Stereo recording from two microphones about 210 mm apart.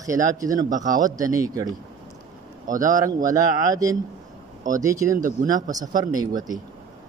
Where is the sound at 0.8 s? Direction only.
40° right (ahead or behind).